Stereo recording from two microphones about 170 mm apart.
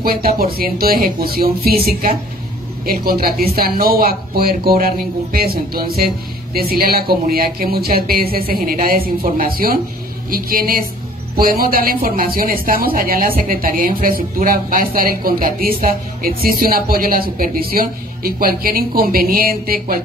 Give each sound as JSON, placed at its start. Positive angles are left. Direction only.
{"t": 0.0, "sound": "speech", "side_deg": -60}